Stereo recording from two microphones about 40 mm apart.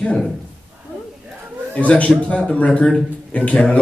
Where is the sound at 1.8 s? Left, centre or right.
Left.